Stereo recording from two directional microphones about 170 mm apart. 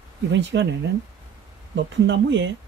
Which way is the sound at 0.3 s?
90° right.